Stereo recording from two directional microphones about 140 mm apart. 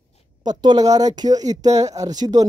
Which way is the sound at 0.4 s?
30° right (ahead or behind).